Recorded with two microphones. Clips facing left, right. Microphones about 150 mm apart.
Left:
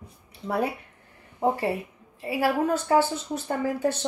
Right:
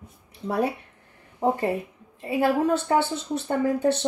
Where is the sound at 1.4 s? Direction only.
10° left (ahead or behind).